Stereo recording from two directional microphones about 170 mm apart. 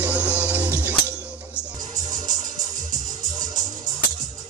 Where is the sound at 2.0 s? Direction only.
25° right (ahead or behind).